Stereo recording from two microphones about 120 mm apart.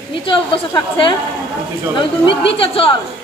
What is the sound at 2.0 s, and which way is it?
Speech, 45° left (ahead or behind).